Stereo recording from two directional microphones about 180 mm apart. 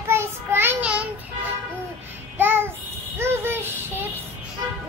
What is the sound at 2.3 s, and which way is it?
Child singing, 10° right (ahead or behind).